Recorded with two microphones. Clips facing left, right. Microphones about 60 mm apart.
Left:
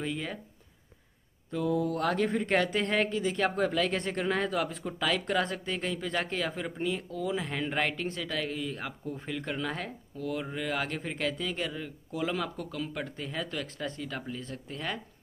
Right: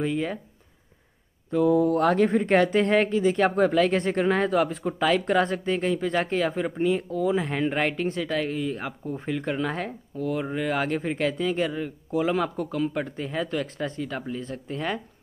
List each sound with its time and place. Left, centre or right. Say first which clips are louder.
0.0 s speech: right 8 dB; right
1.5 s speech: right 9 dB; right